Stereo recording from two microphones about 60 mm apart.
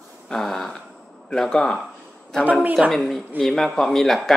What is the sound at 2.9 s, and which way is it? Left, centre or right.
Speech, centre.